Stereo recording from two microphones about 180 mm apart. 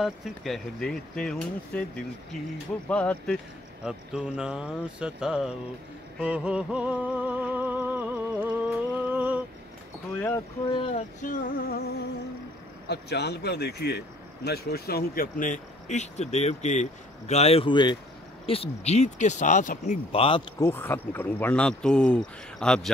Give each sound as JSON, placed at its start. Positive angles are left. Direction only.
{"t": 0.0, "sound": "speech", "side_deg": 0}
{"t": 2.9, "sound": "speech", "side_deg": 5}
{"t": 3.8, "sound": "speech", "side_deg": -5}
{"t": 6.1, "sound": "music", "side_deg": -5}
{"t": 10.1, "sound": "a sound", "side_deg": 10}
{"t": 10.7, "sound": "speech", "side_deg": 30}
{"t": 11.2, "sound": "a man's voice", "side_deg": 50}
{"t": 12.8, "sound": "a man's voice", "side_deg": 65}
{"t": 20.1, "sound": "speech", "side_deg": 30}